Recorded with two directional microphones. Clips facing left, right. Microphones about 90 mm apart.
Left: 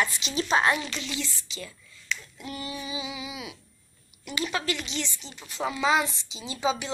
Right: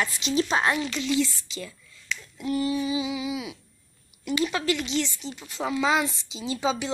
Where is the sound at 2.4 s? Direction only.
15° left (ahead or behind).